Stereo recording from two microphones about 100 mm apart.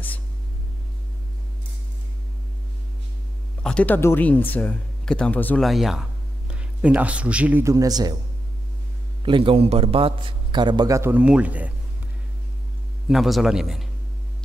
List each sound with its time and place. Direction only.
3.6 s speech: 15° left (ahead or behind)
5.6 s speech: centre (ahead or behind)
6.5 s speech: 10° right (ahead or behind)
7.6 s a man's voice: 35° right (ahead or behind)
9.2 s a man's voice: 60° right (ahead or behind)
10.9 s speech: 30° right (ahead or behind)
11.1 s speech: 10° right (ahead or behind)
13.1 s speech: centre (ahead or behind)